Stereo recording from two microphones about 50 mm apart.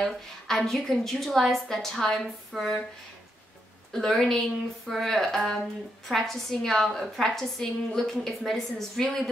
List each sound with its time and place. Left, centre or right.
0.0 s a woman's voice: centre
3.9 s a woman's voice: centre